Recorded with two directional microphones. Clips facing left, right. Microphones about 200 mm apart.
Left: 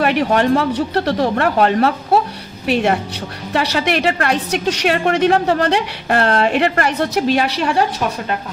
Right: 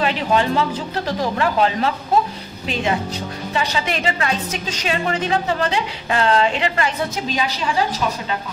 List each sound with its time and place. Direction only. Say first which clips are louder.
0.0 s a woman's voice: left 4 dB; 65° left (ahead or behind)